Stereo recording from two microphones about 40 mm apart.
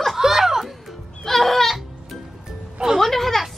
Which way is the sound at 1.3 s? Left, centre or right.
Centre.